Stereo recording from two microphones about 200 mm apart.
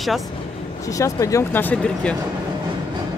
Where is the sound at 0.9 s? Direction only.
15° left (ahead or behind).